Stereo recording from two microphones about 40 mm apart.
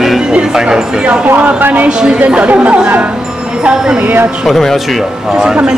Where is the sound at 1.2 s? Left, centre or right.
Right.